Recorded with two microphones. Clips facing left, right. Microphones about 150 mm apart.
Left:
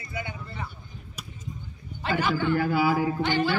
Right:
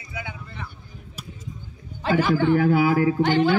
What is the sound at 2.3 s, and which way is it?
A man's voice, 60° right (ahead or behind).